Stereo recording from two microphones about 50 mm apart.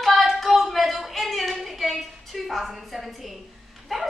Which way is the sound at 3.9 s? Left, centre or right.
Centre.